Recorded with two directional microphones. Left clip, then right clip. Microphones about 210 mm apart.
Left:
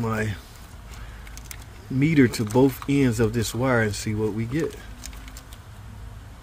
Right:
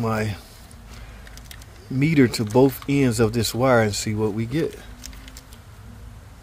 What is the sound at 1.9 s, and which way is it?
Speech, 10° right (ahead or behind).